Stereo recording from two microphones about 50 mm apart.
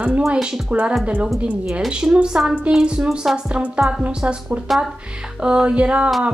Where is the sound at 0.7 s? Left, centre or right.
Right.